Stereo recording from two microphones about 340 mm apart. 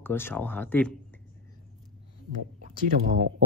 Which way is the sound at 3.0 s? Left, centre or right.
Right.